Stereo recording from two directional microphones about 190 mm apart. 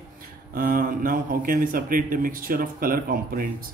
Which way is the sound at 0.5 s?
50° right (ahead or behind).